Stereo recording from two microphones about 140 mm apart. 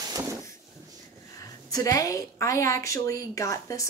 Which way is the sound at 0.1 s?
25° right (ahead or behind).